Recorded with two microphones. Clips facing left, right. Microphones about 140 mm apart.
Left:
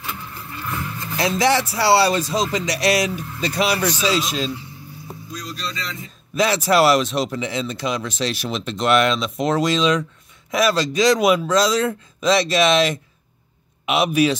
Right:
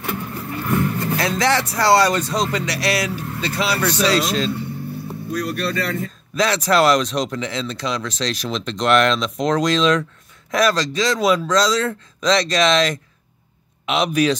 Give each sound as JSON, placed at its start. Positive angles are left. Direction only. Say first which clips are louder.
{"t": 0.0, "sound": "vehicle", "louder": "right 7 dB", "side_deg": -60}
{"t": 1.4, "sound": "speech", "louder": "left 1 dB", "side_deg": 10}
{"t": 3.9, "sound": "speech", "louder": "right 3 dB", "side_deg": -70}
{"t": 4.5, "sound": "vehicle", "louder": "right 6 dB", "side_deg": -60}
{"t": 5.3, "sound": "speech", "louder": "right 9 dB", "side_deg": -60}
{"t": 6.3, "sound": "speech", "louder": "even", "side_deg": 10}